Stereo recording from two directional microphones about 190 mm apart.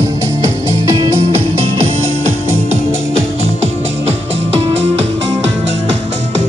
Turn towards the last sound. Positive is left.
turn(degrees=-35)  # may be behind; listen again after turning